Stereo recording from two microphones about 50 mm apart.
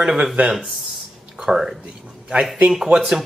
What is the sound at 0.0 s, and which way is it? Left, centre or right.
Speech, centre.